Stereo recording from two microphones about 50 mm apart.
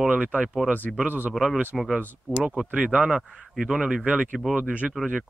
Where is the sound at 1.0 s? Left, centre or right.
Right.